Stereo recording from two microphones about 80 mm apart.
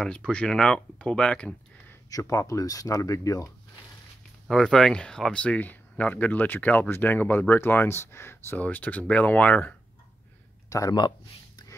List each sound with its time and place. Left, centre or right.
0.0 s speech: centre
2.0 s speech: left
4.5 s speech: centre; by 8.5 s left
8.5 s speech: centre
10.7 s speech: left
11.0 s speech: left